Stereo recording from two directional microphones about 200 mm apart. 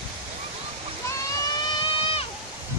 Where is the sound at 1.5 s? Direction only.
25° left (ahead or behind).